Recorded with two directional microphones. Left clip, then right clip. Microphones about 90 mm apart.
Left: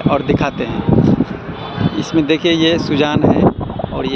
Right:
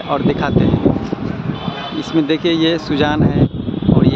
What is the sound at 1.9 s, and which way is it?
Speech, 20° right (ahead or behind).